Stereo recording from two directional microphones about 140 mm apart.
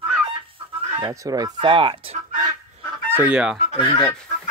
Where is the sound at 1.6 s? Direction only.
40° right (ahead or behind).